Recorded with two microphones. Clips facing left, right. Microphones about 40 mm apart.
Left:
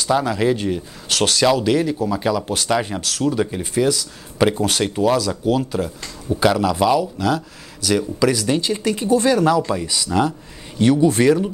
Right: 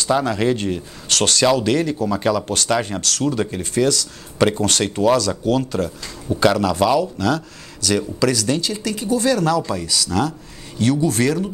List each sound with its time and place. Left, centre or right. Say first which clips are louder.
0.0 s speech: even; centre